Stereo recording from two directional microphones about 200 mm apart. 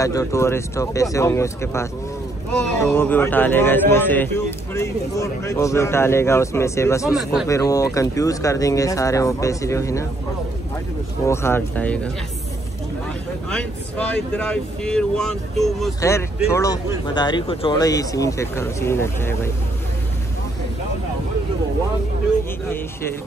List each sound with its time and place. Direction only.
0.0 s a man's voice: 15° left (ahead or behind)
11.2 s a man's voice: 10° left (ahead or behind)
13.5 s speech: 5° left (ahead or behind)
16.0 s a man's voice: 15° left (ahead or behind)